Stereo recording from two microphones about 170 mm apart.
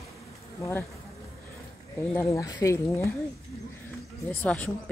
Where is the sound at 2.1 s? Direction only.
15° left (ahead or behind).